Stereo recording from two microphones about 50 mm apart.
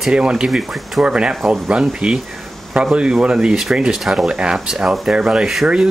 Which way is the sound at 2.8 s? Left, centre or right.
Centre.